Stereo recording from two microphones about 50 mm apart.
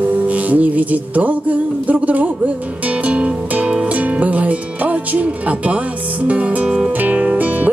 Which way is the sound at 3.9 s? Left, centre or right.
Right.